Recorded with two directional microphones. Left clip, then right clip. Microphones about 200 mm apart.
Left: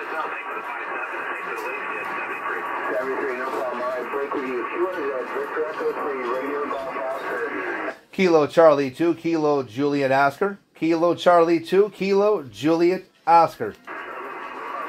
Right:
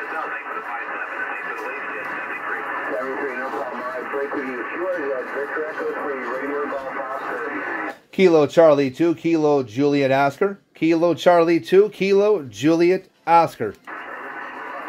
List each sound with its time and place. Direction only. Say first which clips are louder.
8.2 s speech: right 2 dB; 40° right (ahead or behind)